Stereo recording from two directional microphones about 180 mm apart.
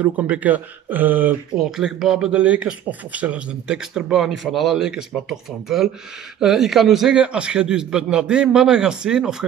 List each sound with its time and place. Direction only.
0.0 s speech: 10° right (ahead or behind)